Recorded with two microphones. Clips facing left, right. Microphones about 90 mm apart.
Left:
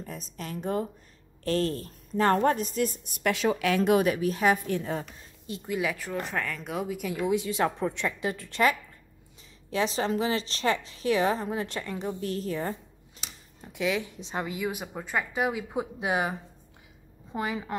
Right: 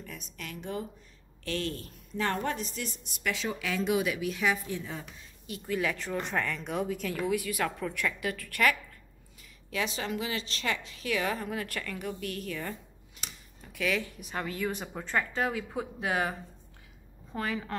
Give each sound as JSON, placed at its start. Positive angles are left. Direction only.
{"t": 0.0, "sound": "a woman's voice", "side_deg": 35}
{"t": 4.6, "sound": "a woman's voice", "side_deg": 55}
{"t": 5.7, "sound": "a woman's voice", "side_deg": 10}
{"t": 13.6, "sound": "speech", "side_deg": 20}